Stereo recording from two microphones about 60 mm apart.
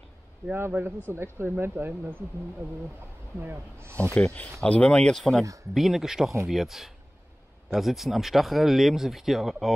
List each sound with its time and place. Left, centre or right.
0.6 s speech: right
3.3 s speech: right
4.1 s speech: left
5.1 s speech: centre